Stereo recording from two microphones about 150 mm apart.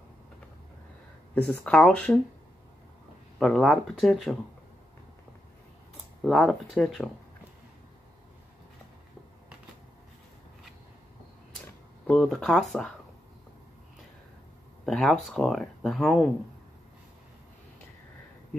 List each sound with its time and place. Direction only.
1.3 s speech: 10° left (ahead or behind)
3.3 s speech: centre (ahead or behind)
6.2 s speech: centre (ahead or behind)
12.1 s speech: centre (ahead or behind)
14.9 s speech: centre (ahead or behind)